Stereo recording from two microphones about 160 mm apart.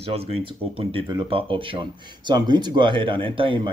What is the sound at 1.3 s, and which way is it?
Speech, 35° right (ahead or behind).